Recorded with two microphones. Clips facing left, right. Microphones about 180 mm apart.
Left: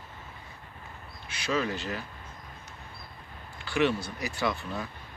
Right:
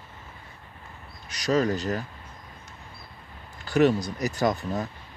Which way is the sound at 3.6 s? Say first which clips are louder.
Right 6 dB; 40° right (ahead or behind).